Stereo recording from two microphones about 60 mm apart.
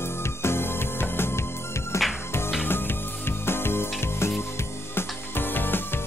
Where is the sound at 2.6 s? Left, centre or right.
Left.